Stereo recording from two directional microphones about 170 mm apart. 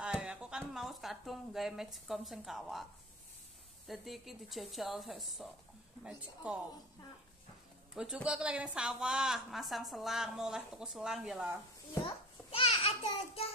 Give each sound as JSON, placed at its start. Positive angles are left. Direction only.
{"t": 0.0, "sound": "a sound", "side_deg": -5}
{"t": 3.8, "sound": "speech", "side_deg": 0}
{"t": 7.9, "sound": "speech", "side_deg": -5}
{"t": 12.4, "sound": "babbling", "side_deg": 35}